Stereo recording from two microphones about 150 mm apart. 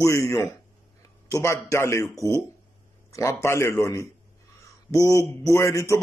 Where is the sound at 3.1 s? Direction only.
20° left (ahead or behind).